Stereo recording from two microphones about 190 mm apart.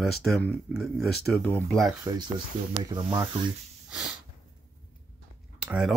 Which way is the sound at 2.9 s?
20° right (ahead or behind).